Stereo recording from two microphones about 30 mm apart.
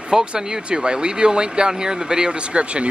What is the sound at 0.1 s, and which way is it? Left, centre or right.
Speech, right.